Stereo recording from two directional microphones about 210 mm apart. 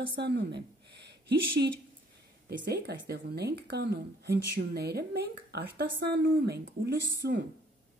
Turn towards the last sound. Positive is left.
turn(degrees=-55)  # may be behind; listen again after turning